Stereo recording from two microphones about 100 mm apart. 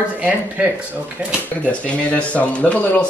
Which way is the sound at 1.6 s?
15° left (ahead or behind).